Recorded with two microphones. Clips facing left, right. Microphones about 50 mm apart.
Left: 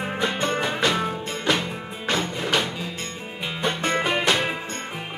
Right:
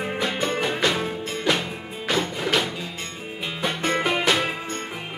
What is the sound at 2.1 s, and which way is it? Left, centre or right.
Music, centre.